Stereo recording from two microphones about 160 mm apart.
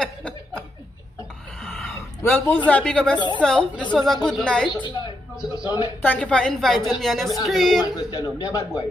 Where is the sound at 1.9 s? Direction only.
15° left (ahead or behind).